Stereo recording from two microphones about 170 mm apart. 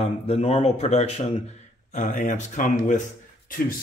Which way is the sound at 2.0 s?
50° left (ahead or behind).